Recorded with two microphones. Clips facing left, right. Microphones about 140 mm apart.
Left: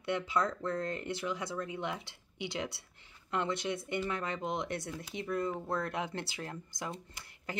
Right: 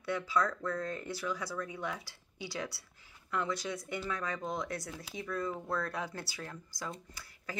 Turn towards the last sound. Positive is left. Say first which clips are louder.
# left 1 dB
turn(degrees=25)  # may be behind; listen again after turning